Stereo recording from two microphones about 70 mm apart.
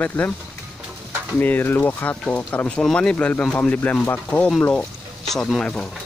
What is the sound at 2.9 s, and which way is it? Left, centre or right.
Speech, centre.